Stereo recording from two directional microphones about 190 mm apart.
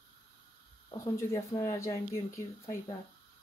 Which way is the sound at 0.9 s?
15° left (ahead or behind).